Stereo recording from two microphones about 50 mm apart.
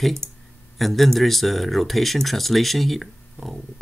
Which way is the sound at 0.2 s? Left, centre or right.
Right.